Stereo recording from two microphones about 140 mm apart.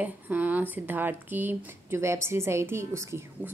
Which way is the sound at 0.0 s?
10° right (ahead or behind).